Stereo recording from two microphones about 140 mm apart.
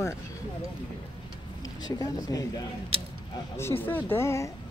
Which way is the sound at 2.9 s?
40° right (ahead or behind).